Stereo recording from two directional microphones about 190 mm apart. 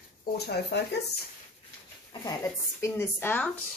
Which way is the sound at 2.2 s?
15° left (ahead or behind).